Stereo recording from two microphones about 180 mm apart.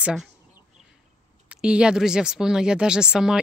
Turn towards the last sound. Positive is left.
turn(degrees=-5)  # may be behind; listen again after turning